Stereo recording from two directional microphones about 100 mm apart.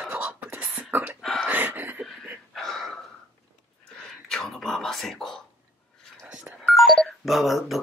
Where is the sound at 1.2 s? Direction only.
5° left (ahead or behind).